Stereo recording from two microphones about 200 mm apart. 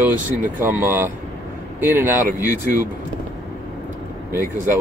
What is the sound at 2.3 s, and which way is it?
Speech, 45° right (ahead or behind).